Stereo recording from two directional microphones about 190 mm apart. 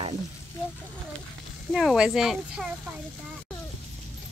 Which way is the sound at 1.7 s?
5° right (ahead or behind).